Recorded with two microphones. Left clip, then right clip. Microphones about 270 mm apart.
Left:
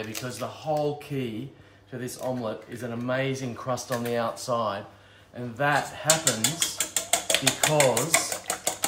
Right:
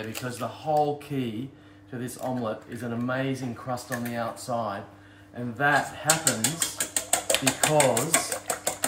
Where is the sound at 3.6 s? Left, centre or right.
Left.